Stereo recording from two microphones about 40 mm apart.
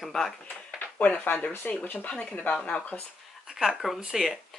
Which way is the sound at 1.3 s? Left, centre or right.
Left.